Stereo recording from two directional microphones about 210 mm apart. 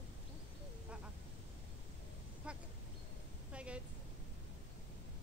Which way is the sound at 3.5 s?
5° right (ahead or behind).